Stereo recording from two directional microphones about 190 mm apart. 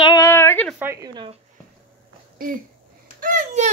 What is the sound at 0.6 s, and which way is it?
Speech, 10° right (ahead or behind).